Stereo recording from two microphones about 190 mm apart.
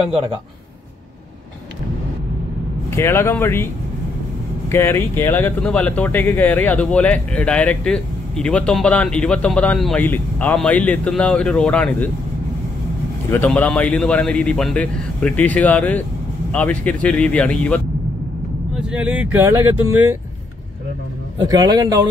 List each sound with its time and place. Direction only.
3.0 s speech: 10° left (ahead or behind)
4.6 s speech: 15° left (ahead or behind)
13.3 s speech: 10° left (ahead or behind)
18.8 s speech: 5° right (ahead or behind)
21.5 s a man's voice: 20° right (ahead or behind)